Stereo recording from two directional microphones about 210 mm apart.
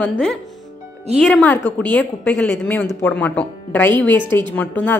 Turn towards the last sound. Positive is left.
turn(degrees=5)  # may be behind; listen again after turning